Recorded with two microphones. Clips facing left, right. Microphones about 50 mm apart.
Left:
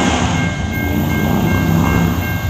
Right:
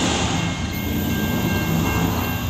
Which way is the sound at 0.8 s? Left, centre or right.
Left.